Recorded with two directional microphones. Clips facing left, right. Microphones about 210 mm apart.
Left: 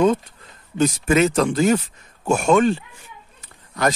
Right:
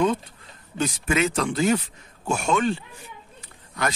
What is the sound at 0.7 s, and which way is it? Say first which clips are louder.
A man's voice: left 6 dB; 40° left (ahead or behind).